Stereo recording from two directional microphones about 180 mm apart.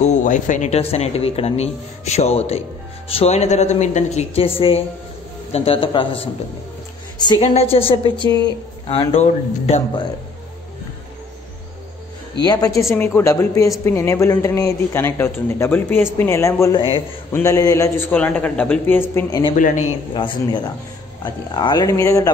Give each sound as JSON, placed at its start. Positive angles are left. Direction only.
{"t": 0.0, "sound": "a woman's voice", "side_deg": 45}
{"t": 7.4, "sound": "speech", "side_deg": 35}
{"t": 12.4, "sound": "a woman's voice", "side_deg": 20}
{"t": 19.5, "sound": "a man's voice", "side_deg": 45}
{"t": 20.2, "sound": "a woman's voice", "side_deg": 25}